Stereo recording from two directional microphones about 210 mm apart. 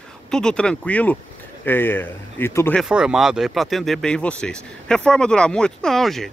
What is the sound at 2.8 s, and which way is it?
Speech, 5° right (ahead or behind).